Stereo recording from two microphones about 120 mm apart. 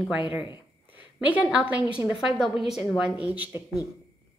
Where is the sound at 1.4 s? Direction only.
10° right (ahead or behind).